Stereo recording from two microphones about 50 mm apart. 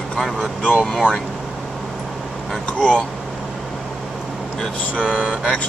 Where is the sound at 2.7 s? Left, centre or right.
Left.